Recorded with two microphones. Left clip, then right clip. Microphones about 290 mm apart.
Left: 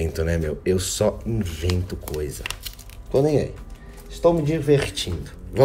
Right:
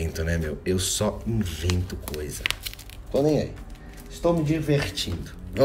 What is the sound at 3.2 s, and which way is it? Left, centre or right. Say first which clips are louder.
Speech: left 2 dB; left.